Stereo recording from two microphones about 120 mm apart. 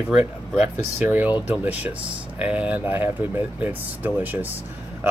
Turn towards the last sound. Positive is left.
turn(degrees=-15)  # may be behind; listen again after turning